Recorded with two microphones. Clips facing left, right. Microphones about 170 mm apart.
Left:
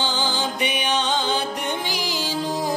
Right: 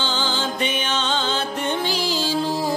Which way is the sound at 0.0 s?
15° left (ahead or behind).